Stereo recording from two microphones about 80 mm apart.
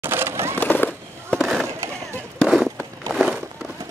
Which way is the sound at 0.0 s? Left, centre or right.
Right.